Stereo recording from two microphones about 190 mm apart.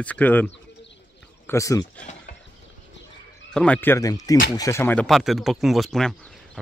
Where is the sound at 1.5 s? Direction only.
15° left (ahead or behind).